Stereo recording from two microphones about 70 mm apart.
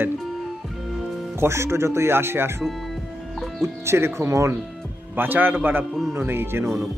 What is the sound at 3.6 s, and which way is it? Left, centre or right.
Speech, right.